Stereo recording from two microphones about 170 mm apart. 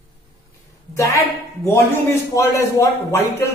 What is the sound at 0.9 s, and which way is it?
A man's voice, 20° left (ahead or behind).